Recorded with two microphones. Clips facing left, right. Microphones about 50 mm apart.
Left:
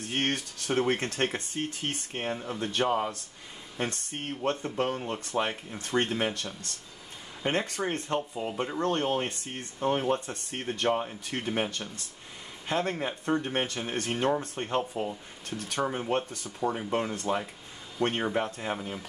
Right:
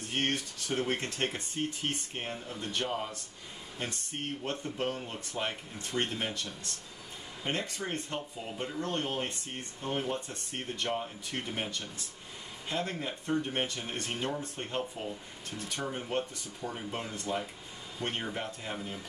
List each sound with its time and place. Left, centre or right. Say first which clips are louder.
0.0 s speech: left 2 dB; left
2.6 s speech: left 7 dB; left
4.4 s speech: left 8 dB; left
8.5 s speech: left 6 dB; left
8.7 s speech: left 6 dB; left
12.6 s speech: left 5 dB; left
15.5 s speech: left 7 dB; left
15.9 s speech: left 4 dB; left
17.1 s speech: left 5 dB; left